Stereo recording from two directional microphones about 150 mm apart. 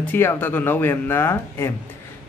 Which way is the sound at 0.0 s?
15° left (ahead or behind).